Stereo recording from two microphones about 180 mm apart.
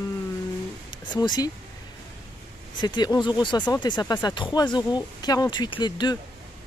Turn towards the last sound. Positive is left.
turn(degrees=25)  # may be behind; listen again after turning